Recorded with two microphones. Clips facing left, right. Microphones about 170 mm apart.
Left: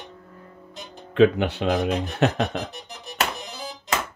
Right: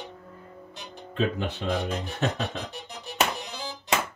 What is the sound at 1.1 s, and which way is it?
Speech, 70° left (ahead or behind).